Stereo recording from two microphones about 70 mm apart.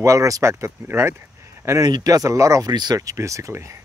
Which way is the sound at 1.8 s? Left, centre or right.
Right.